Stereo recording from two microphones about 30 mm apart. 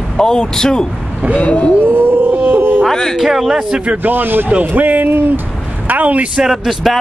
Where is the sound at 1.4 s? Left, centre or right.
Left.